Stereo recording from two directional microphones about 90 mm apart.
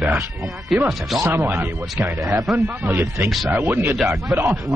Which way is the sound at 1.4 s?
20° right (ahead or behind).